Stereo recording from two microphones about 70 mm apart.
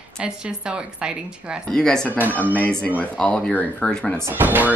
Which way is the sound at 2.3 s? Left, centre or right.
Left.